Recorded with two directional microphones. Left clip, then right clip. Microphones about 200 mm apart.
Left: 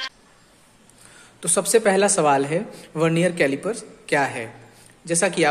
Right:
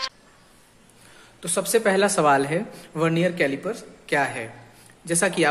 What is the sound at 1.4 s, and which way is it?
A woman's voice, 20° left (ahead or behind).